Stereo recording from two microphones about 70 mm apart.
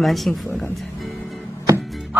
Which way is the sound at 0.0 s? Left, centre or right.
Centre.